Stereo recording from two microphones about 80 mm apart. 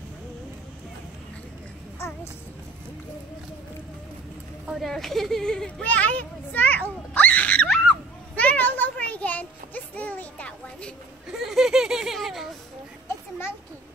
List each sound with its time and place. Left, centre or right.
4.6 s speech: centre
5.9 s a child's voice: centre
7.6 s a sound: centre
7.9 s children playing: centre
11.3 s speech: centre